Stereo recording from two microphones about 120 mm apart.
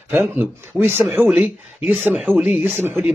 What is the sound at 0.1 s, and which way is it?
A man's voice, 15° right (ahead or behind).